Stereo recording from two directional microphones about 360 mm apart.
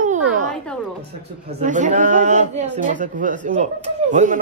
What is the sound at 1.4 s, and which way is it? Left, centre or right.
Speech, right.